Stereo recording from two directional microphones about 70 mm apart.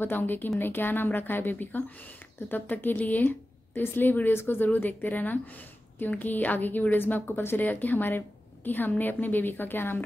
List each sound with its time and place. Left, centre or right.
0.0 s a woman's voice: left